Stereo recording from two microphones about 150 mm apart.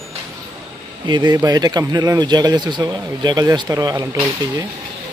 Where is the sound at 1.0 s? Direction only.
30° right (ahead or behind).